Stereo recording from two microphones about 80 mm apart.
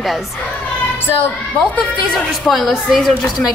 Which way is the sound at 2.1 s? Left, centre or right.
Centre.